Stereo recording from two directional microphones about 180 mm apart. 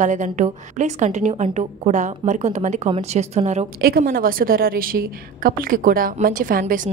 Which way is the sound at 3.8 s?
55° right (ahead or behind).